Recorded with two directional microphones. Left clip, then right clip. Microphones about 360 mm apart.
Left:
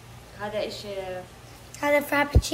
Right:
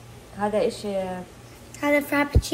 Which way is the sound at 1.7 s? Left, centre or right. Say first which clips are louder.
Even; centre.